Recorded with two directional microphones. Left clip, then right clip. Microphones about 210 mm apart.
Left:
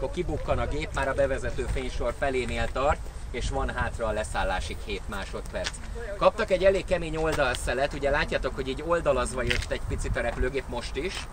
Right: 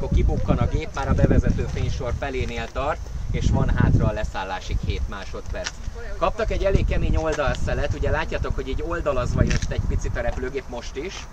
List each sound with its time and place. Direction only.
0.1 s speech: 55° left (ahead or behind)
6.2 s speech: 55° left (ahead or behind)